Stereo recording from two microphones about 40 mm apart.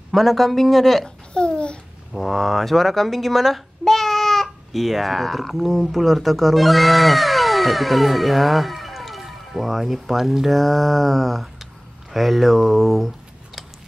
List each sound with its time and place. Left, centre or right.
0.1 s speech: centre
1.0 s babbling: left
2.1 s a child's voice: centre